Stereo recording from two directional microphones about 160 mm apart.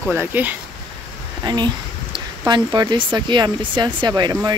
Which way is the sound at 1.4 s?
25° right (ahead or behind).